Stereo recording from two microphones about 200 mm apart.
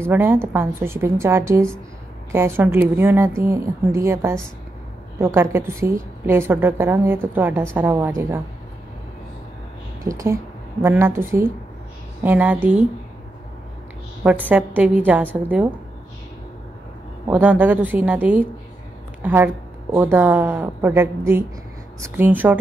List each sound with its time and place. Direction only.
0.0 s a woman's voice: 10° right (ahead or behind)
10.0 s a woman's voice: 15° right (ahead or behind)
14.2 s a woman's voice: 5° right (ahead or behind)
17.3 s a woman's voice: 10° right (ahead or behind)
22.1 s a woman's voice: 10° right (ahead or behind)